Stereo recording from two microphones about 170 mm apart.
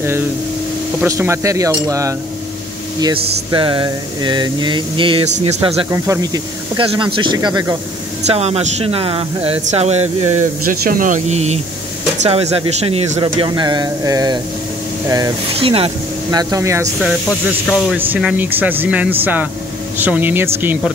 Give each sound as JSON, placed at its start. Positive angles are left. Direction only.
{"t": 1.0, "sound": "speech", "side_deg": -15}
{"t": 3.5, "sound": "speech", "side_deg": -30}
{"t": 5.9, "sound": "speech", "side_deg": -20}
{"t": 6.8, "sound": "speech", "side_deg": -30}
{"t": 8.3, "sound": "speech", "side_deg": -40}
{"t": 10.6, "sound": "speech", "side_deg": -60}
{"t": 15.6, "sound": "speech", "side_deg": -35}
{"t": 16.3, "sound": "speech", "side_deg": -20}
{"t": 17.0, "sound": "speech", "side_deg": 0}
{"t": 17.9, "sound": "speech", "side_deg": -10}